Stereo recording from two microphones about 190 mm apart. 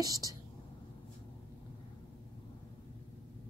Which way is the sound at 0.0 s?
20° right (ahead or behind).